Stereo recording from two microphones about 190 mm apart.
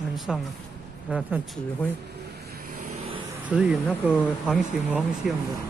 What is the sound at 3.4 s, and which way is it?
Speech, 5° right (ahead or behind).